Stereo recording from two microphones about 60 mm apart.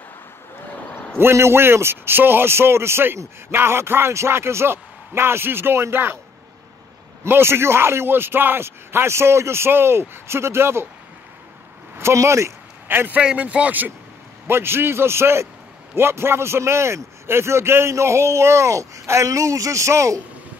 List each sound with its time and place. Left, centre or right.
1.1 s a man's voice: right
7.2 s a man's voice: right
12.0 s a man's voice: right
12.8 s a man's voice: right
13.2 s speech: centre
14.5 s a man's voice: right